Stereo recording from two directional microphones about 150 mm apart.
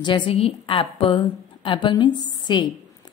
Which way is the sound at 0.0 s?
30° left (ahead or behind).